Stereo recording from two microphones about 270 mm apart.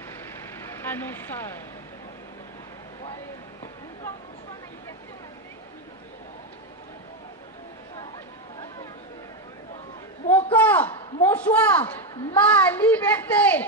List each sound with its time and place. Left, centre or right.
0.6 s vehicle: centre
10.3 s a sound: centre
11.2 s a woman's voice: centre